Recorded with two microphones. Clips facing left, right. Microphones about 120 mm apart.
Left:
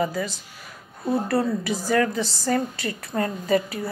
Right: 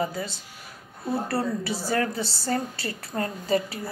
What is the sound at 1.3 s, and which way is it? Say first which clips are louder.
A woman's voice: left 4 dB; 30° right (ahead or behind).